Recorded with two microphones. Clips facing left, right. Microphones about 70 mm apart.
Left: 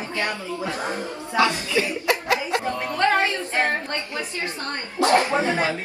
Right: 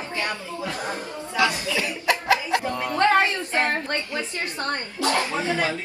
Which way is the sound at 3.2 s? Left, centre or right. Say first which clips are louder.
Left 1 dB; left.